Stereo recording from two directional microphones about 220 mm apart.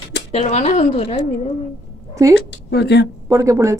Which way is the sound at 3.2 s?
15° right (ahead or behind).